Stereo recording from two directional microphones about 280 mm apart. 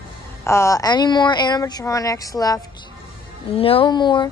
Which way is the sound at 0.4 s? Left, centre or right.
Centre.